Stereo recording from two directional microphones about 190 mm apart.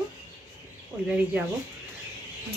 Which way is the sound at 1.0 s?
10° right (ahead or behind).